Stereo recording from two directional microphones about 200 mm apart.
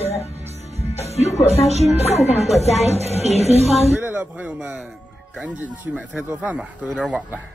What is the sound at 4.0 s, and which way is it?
Speech, 10° right (ahead or behind).